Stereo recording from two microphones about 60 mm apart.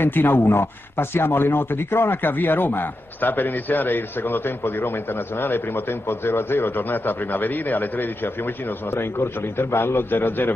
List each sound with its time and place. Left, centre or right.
0.0 s a man's voice: left
8.9 s a man's voice: left